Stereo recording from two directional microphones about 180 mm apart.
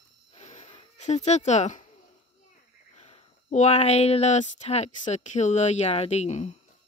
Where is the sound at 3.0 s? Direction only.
35° left (ahead or behind).